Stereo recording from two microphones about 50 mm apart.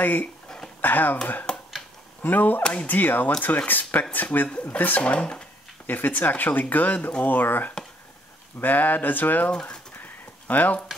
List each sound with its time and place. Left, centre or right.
0.0 s speech: left
2.2 s speech: left
5.1 s speech: left
5.9 s speech: left
9.5 s speech: centre
10.5 s speech: left